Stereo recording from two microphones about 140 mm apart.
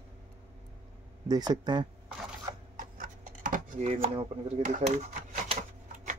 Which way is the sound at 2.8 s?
70° right (ahead or behind).